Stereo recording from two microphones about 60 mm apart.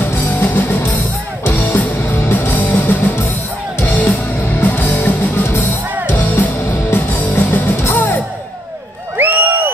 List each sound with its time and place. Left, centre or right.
0.0 s music: left
6.9 s music: left
9.1 s crowd: right